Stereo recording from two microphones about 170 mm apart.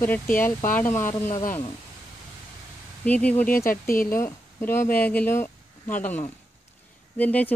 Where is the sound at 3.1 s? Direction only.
10° left (ahead or behind).